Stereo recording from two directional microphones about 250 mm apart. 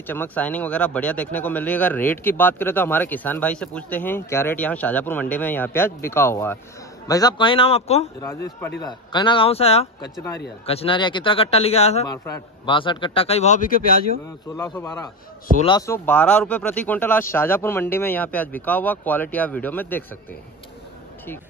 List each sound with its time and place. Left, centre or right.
0.0 s speech: centre; by 8.1 s left
8.2 s speech: centre
8.8 s speech: centre; by 14.0 s left
15.6 s speech: centre